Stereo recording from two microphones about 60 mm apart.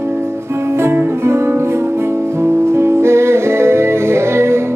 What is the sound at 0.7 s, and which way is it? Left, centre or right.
Music, right.